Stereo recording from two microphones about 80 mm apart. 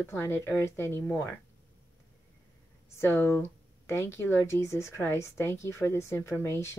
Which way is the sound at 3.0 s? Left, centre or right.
Left.